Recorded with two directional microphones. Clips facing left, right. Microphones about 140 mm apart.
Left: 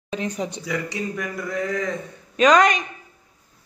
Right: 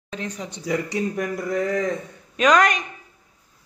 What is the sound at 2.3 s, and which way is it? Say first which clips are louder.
Speech: left 2 dB; centre (ahead or behind).